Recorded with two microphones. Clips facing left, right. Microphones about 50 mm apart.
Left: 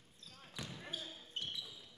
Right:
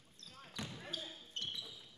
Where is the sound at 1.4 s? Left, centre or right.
Centre.